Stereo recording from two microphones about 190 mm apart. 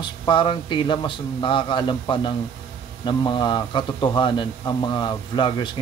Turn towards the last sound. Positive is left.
turn(degrees=25)  # may be behind; listen again after turning